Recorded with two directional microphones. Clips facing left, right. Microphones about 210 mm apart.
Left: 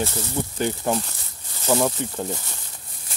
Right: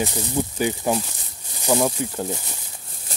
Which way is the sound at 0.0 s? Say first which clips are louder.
Right 2 dB; 15° right (ahead or behind).